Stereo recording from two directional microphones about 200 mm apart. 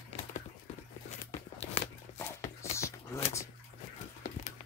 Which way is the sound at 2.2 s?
15° left (ahead or behind).